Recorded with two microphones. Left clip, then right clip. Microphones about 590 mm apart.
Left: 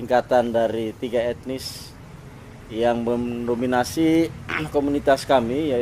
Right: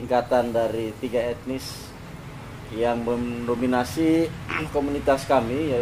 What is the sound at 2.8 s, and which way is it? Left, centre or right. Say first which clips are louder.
Speech: left 3 dB; left.